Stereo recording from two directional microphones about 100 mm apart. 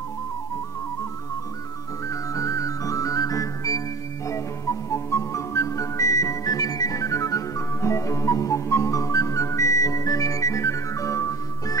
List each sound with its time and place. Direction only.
2.0 s music: 30° left (ahead or behind)